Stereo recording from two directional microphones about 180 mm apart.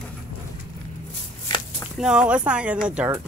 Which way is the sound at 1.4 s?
25° left (ahead or behind).